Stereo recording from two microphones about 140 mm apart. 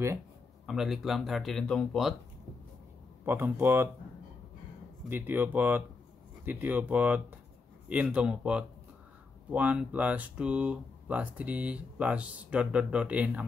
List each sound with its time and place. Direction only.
0.7 s speech: centre (ahead or behind)
3.3 s speech: 15° right (ahead or behind)
5.1 s speech: 15° right (ahead or behind)